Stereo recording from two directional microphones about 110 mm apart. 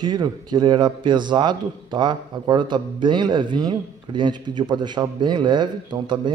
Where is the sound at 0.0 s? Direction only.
40° right (ahead or behind).